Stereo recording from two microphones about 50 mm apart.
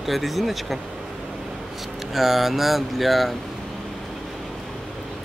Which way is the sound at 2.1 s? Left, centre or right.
Centre.